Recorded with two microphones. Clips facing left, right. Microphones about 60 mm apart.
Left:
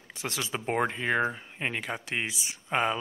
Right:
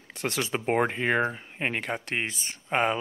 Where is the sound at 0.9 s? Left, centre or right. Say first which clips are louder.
Right 2 dB; right.